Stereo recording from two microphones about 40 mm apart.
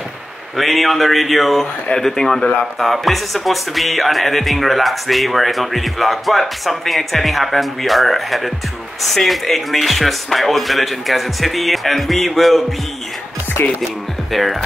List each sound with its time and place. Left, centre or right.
0.6 s music: centre
13.6 s music: left
14.3 s music: centre